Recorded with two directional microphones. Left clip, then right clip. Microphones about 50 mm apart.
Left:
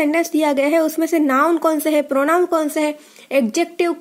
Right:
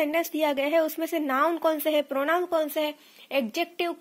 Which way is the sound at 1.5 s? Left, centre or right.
Left.